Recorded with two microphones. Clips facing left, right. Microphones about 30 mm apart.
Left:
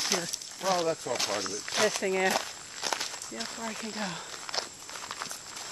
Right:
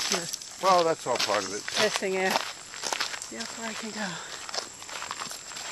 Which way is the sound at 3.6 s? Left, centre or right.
Right.